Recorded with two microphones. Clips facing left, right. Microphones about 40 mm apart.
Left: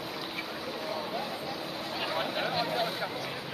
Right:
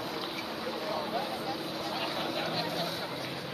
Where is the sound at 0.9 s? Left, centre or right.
Centre.